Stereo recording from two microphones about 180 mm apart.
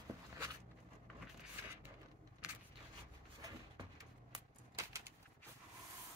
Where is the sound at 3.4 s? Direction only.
20° right (ahead or behind).